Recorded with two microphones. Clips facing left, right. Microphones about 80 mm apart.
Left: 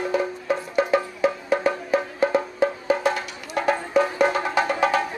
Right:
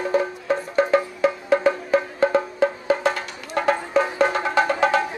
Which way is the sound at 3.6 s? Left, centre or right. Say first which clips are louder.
Right 1 dB; right.